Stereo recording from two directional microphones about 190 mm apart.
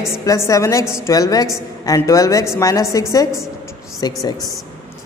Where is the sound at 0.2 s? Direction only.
15° left (ahead or behind).